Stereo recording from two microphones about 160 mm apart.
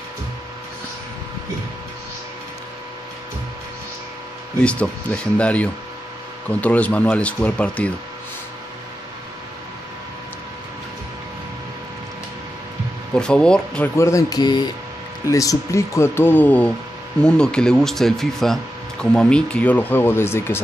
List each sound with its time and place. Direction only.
4.6 s speech: 5° left (ahead or behind)
13.1 s speech: 5° left (ahead or behind)
13.9 s speech: 20° left (ahead or behind)